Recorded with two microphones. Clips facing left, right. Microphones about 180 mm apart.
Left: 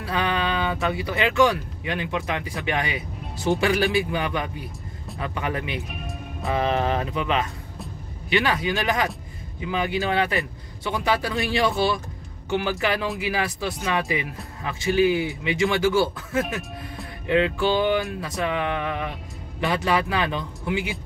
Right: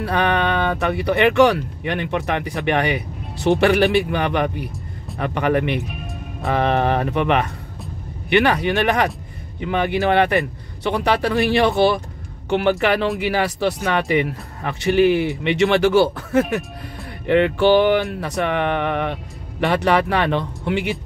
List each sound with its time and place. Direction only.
0.0 s speech: 60° right (ahead or behind)
17.3 s music: 70° right (ahead or behind)
18.2 s speech: 65° right (ahead or behind)